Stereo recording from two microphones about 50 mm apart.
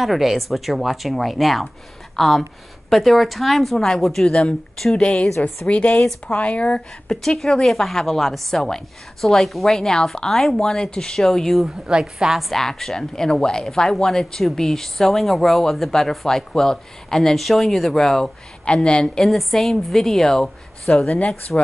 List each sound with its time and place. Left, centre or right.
0.0 s speech: centre
4.9 s speech: centre
7.1 s speech: centre
11.8 s a woman's voice: centre
12.4 s speech: centre
19.0 s speech: centre